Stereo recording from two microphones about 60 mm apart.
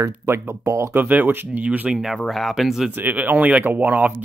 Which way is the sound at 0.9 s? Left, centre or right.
Right.